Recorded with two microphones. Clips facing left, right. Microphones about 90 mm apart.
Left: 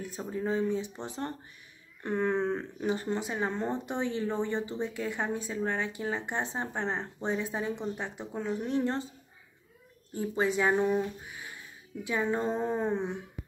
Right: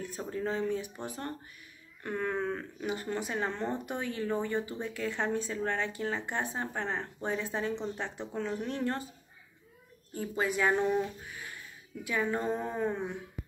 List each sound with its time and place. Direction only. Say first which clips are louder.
0.0 s speech: left 1 dB; 15° left (ahead or behind)
10.1 s speech: left 3 dB; 25° left (ahead or behind)